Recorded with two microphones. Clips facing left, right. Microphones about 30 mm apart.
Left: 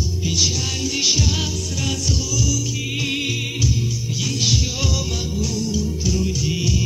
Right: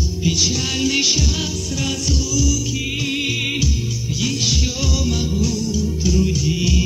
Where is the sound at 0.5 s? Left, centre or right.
Centre.